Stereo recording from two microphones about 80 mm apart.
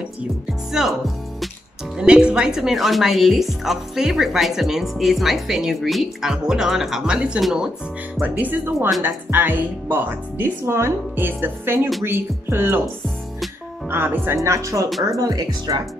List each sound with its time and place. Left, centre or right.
0.7 s speech: centre
2.0 s speech: centre
8.2 s speech: right
13.8 s speech: right
15.0 s speech: right